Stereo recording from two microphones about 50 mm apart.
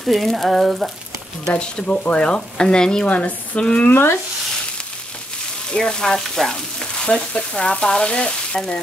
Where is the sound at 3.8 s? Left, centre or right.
Left.